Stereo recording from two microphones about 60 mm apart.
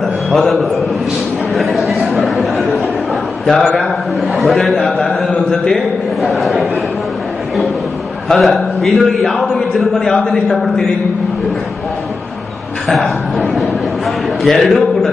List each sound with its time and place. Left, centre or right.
0.3 s a man's voice: centre
3.5 s a man's voice: centre
4.4 s a man's voice: centre
6.3 s a man's voice: centre
8.3 s a man's voice: centre
12.8 s a man's voice: centre